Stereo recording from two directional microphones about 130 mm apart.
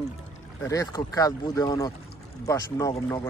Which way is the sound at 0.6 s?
25° left (ahead or behind).